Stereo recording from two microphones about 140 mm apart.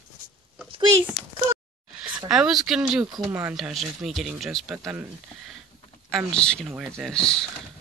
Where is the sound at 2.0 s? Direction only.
5° right (ahead or behind).